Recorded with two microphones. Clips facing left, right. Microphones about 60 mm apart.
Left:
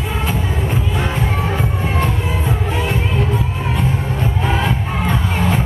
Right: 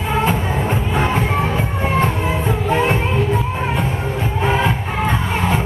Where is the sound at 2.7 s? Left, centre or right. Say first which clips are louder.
Right 5 dB; right.